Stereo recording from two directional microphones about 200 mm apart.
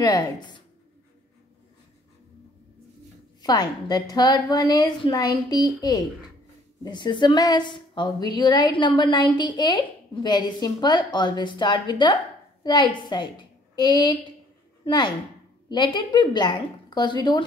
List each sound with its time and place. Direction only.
0.0 s a woman's voice: 20° left (ahead or behind)
3.4 s a woman's voice: 20° left (ahead or behind)